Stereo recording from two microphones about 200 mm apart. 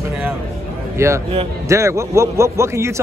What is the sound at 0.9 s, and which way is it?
A man's voice, 15° right (ahead or behind).